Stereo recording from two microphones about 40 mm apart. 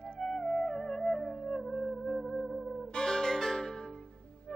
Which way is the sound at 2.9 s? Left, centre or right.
Centre.